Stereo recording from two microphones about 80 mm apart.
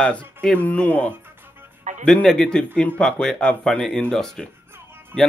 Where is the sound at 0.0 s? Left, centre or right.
Centre.